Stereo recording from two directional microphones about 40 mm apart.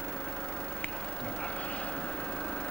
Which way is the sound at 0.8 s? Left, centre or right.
Left.